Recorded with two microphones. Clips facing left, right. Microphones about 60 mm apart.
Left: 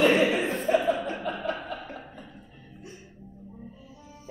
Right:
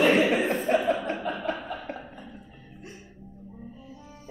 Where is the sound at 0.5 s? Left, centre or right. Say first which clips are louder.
Even; centre.